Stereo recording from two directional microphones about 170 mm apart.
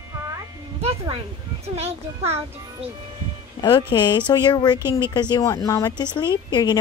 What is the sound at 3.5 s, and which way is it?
A woman's voice, 25° left (ahead or behind).